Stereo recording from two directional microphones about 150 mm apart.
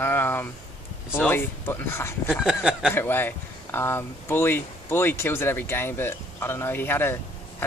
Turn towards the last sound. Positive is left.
turn(degrees=15)  # may be behind; listen again after turning